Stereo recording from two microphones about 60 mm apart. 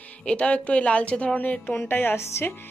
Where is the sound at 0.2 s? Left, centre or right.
Centre.